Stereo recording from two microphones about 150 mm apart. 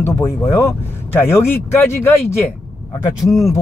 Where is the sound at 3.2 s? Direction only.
Centre (ahead or behind).